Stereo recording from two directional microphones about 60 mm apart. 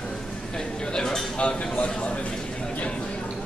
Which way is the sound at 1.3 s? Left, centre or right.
Centre.